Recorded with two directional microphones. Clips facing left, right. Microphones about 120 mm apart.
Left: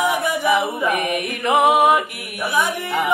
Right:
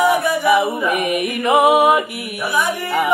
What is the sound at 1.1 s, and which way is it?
Mantra, 5° right (ahead or behind).